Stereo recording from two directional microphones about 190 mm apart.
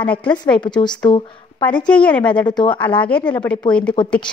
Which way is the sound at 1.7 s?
5° left (ahead or behind).